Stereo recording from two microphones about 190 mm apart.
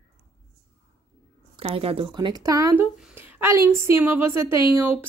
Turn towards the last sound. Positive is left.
turn(degrees=-10)  # may be behind; listen again after turning